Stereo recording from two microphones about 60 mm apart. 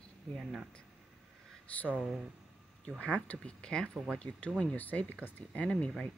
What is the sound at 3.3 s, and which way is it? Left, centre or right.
Speech, centre.